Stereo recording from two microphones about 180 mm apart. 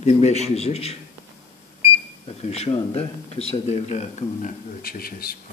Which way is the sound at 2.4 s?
35° left (ahead or behind).